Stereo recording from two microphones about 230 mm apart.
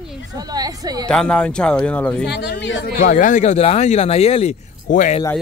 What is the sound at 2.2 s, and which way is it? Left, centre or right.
Speech, left.